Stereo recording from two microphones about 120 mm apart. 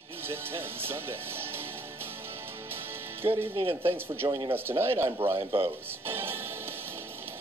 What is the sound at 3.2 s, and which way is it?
Speech, 20° right (ahead or behind).